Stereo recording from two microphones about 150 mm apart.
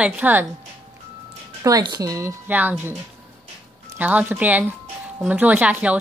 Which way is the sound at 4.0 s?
10° right (ahead or behind).